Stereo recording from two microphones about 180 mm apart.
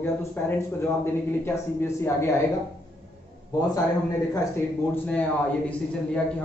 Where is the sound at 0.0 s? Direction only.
15° left (ahead or behind).